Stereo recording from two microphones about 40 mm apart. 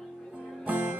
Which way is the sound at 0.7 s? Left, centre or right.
Right.